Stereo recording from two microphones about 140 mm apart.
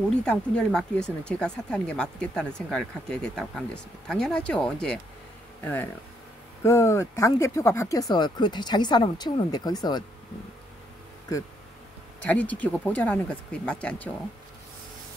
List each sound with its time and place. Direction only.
0.1 s speech: 5° left (ahead or behind); by 10.0 s 30° left (ahead or behind)
12.3 s speech: 10° left (ahead or behind)